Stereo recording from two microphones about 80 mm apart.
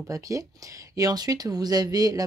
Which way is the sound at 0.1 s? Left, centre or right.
Right.